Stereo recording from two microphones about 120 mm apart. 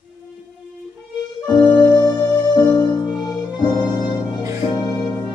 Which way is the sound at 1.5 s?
35° left (ahead or behind).